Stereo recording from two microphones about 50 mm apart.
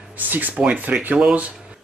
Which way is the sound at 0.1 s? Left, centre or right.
Right.